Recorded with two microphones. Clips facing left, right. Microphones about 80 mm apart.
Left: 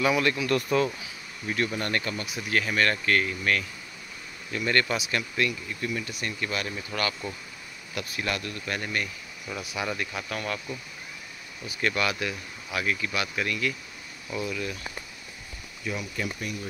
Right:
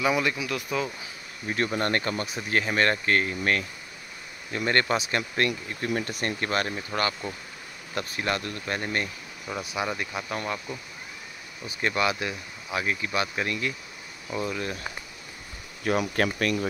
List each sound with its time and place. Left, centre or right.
0.0 s speech: centre
0.5 s speech: centre
1.5 s speech: right
6.7 s speech: right
15.8 s speech: right